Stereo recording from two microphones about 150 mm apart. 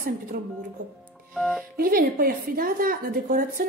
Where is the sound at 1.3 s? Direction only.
Centre (ahead or behind).